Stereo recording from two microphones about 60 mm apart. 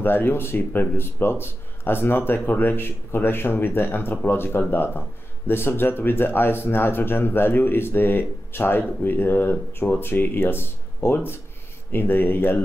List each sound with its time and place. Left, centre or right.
0.0 s speech: left